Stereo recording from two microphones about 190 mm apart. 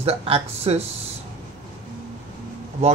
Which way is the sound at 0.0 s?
30° right (ahead or behind).